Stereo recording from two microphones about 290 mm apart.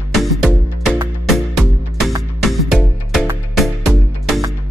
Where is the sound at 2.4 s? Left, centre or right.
Centre.